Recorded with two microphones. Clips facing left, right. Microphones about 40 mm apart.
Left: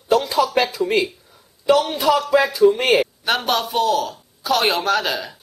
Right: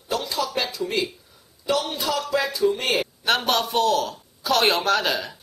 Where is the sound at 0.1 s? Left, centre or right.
Left.